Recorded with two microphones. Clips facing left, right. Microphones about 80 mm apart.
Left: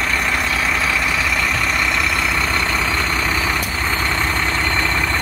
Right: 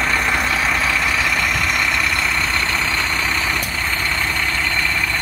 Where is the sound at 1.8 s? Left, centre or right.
Centre.